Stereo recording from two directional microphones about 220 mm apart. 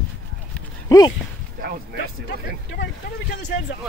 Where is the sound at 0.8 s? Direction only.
15° left (ahead or behind).